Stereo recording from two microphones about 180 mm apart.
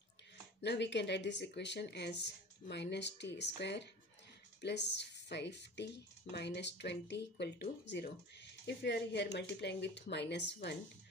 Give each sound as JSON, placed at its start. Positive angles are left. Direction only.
{"t": 0.6, "sound": "speech", "side_deg": 75}